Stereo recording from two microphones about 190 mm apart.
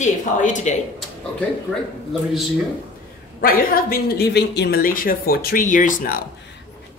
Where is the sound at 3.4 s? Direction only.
50° left (ahead or behind).